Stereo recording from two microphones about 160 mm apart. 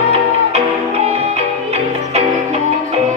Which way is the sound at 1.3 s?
40° right (ahead or behind).